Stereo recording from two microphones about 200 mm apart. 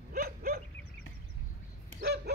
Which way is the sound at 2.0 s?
50° right (ahead or behind).